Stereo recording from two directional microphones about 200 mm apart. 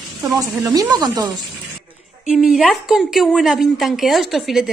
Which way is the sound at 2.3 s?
Centre (ahead or behind).